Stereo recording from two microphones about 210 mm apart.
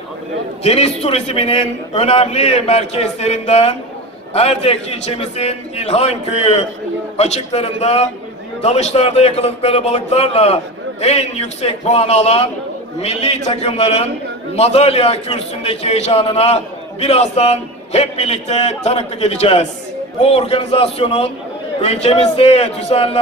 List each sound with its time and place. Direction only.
0.7 s a man's voice: 30° left (ahead or behind)